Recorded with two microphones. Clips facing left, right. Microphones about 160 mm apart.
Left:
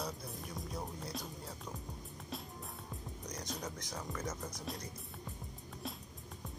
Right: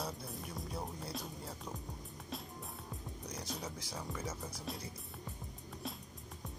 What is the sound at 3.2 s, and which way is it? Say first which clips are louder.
Speech: left 1 dB; 5° right (ahead or behind).